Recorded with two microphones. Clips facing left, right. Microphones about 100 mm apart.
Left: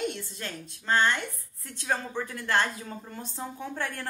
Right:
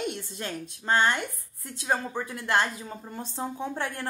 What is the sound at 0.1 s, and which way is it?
A woman's voice, 15° right (ahead or behind).